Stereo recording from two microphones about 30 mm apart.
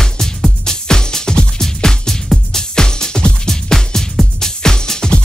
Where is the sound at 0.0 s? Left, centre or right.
Centre.